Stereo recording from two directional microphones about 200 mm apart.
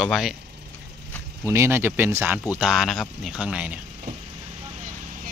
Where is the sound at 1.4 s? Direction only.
15° right (ahead or behind).